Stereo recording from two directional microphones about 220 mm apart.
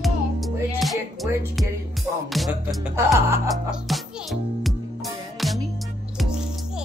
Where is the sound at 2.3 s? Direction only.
5° right (ahead or behind).